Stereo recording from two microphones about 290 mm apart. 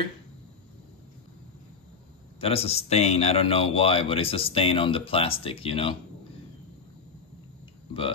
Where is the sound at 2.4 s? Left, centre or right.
Centre.